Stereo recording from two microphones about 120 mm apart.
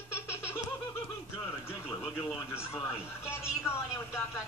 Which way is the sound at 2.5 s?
20° left (ahead or behind).